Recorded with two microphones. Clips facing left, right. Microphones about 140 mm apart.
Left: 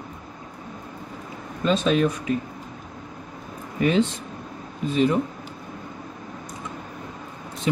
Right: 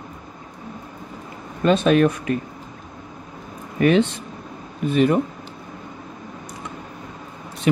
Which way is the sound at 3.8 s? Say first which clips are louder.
Right 4 dB; 65° right (ahead or behind).